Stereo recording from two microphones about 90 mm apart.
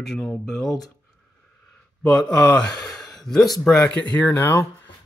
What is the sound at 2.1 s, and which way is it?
Speech, 5° left (ahead or behind).